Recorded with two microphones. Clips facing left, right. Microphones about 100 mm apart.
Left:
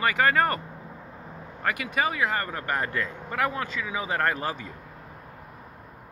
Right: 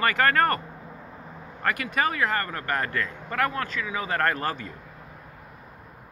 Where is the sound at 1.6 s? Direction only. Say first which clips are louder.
Right 1 dB; 10° left (ahead or behind).